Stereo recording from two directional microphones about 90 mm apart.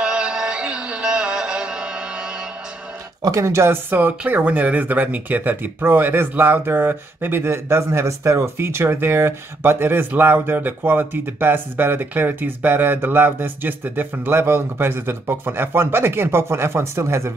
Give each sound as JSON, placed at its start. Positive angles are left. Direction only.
{"t": 0.0, "sound": "music", "side_deg": -10}
{"t": 3.2, "sound": "speech", "side_deg": -35}